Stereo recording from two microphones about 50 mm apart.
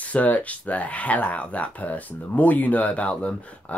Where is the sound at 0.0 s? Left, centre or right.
Left.